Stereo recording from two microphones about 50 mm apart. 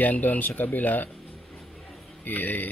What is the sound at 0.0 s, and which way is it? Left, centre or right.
Speech, left.